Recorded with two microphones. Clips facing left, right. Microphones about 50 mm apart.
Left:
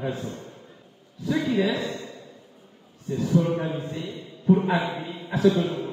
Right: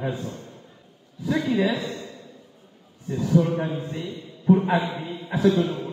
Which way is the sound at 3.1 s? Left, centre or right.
Centre.